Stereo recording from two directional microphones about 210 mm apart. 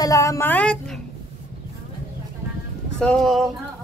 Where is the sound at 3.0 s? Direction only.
5° left (ahead or behind).